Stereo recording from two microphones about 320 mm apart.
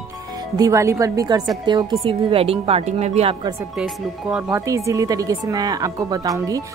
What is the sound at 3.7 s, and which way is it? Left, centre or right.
Speech, centre.